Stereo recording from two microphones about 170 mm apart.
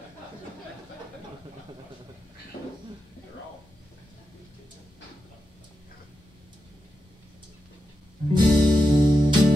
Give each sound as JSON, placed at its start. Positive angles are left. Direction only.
{"t": 8.3, "sound": "music", "side_deg": -25}